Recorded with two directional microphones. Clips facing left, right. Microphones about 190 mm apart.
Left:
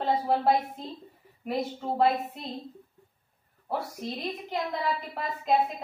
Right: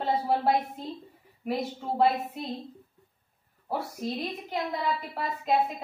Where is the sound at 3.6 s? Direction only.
Centre (ahead or behind).